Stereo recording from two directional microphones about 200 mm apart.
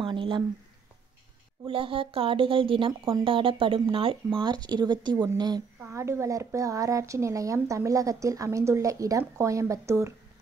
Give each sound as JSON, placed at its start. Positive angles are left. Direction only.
{"t": 0.0, "sound": "speech", "side_deg": -25}
{"t": 1.7, "sound": "speech", "side_deg": -25}